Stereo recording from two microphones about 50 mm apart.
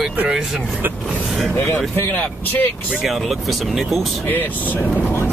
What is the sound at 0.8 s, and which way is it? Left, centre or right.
Speech, right.